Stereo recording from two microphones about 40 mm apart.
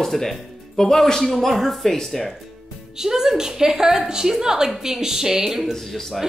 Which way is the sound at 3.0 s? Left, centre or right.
Centre.